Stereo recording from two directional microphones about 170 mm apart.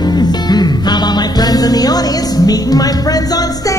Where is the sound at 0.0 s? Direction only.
25° left (ahead or behind).